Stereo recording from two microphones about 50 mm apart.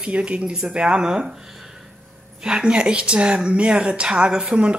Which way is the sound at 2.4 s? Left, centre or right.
Centre.